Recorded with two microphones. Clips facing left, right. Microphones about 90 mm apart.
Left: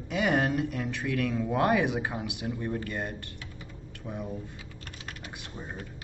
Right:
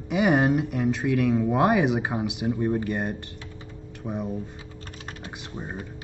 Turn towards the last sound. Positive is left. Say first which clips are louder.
# right 5 dB
turn(degrees=-25)  # may be behind; listen again after turning